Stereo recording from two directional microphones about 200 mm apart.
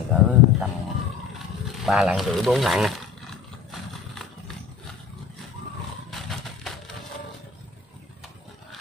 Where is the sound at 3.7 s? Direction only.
Centre (ahead or behind).